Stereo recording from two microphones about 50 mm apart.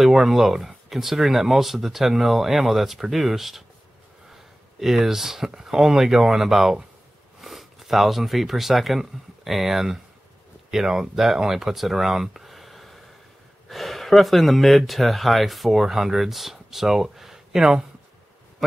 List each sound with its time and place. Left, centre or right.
0.0 s speech: centre
4.7 s speech: centre